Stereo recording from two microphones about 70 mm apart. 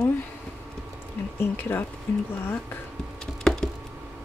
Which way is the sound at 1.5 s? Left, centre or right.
Left.